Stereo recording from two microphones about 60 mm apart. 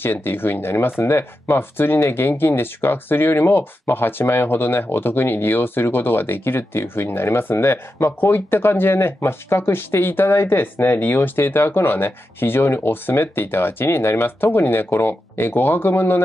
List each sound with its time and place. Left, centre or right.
0.0 s speech: left